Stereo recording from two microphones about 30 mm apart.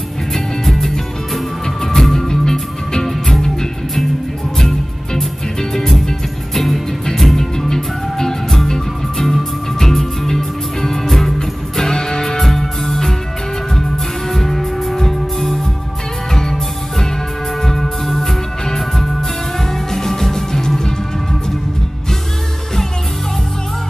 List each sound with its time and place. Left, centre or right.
0.3 s music: centre
3.1 s music: centre
6.5 s music: centre
12.8 s music: centre
14.3 s music: centre
17.6 s music: centre